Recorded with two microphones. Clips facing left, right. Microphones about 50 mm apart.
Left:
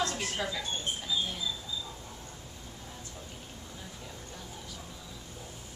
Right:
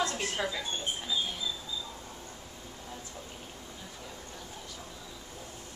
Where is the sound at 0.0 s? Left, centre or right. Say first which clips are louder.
Right 1 dB; centre.